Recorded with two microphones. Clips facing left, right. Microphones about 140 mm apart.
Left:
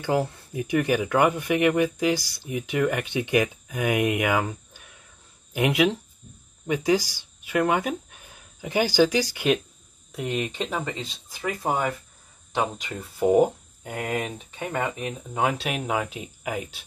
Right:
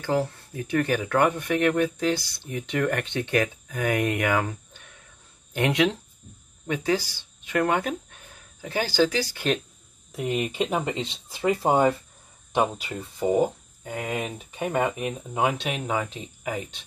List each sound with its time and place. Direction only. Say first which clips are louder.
0.0 s speech: left 1 dB; 15° left (ahead or behind)
10.1 s speech: right 2 dB; 5° right (ahead or behind); by 11.9 s 25° right (ahead or behind)
12.5 s speech: right 3 dB; 10° right (ahead or behind)
14.5 s speech: right 5 dB; 15° right (ahead or behind); by 16.8 s 5° left (ahead or behind)